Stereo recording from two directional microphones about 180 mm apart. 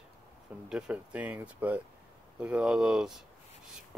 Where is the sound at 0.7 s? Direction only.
5° right (ahead or behind).